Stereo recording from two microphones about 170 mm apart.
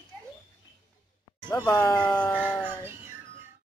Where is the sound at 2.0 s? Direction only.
5° left (ahead or behind).